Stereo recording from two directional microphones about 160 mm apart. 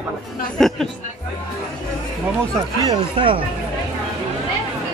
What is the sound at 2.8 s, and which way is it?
Speech, 30° right (ahead or behind).